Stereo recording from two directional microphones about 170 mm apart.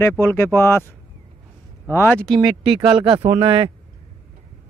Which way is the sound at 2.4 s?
5° right (ahead or behind).